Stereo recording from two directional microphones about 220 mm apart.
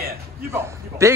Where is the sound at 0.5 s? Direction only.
10° right (ahead or behind).